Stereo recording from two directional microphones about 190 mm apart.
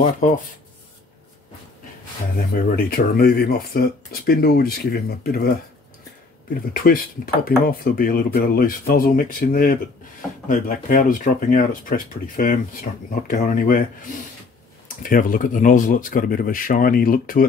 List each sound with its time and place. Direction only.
0.2 s speech: 40° left (ahead or behind)
2.5 s speech: 50° left (ahead or behind)
6.7 s speech: 50° left (ahead or behind)
15.0 s speech: 45° left (ahead or behind)